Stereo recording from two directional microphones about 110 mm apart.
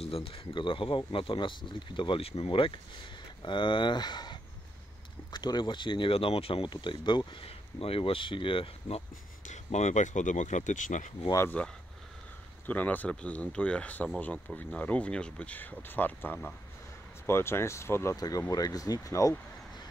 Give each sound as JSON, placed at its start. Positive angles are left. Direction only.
{"t": 0.0, "sound": "speech", "side_deg": 60}
{"t": 3.4, "sound": "speech", "side_deg": 45}
{"t": 7.4, "sound": "speech", "side_deg": 60}
{"t": 9.5, "sound": "speech", "side_deg": 90}
{"t": 12.6, "sound": "speech", "side_deg": 15}